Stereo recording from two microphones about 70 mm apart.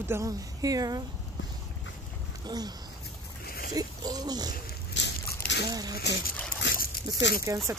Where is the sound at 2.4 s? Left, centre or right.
Right.